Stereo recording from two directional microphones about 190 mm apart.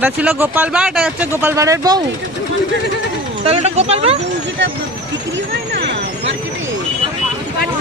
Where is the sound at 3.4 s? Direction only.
35° right (ahead or behind).